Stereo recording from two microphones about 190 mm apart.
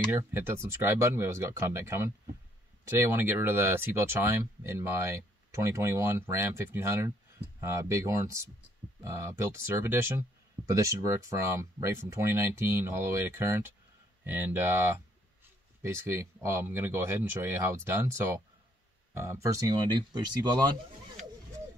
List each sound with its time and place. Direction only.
0.1 s speech: 10° right (ahead or behind)